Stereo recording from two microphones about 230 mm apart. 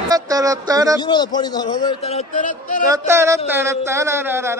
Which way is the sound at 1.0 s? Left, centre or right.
Centre.